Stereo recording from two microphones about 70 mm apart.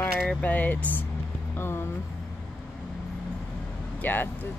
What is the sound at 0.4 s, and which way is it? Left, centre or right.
Speech, left.